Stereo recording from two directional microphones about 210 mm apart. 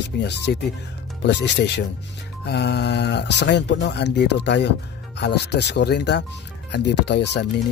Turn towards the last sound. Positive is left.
turn(degrees=55)  # may be behind; listen again after turning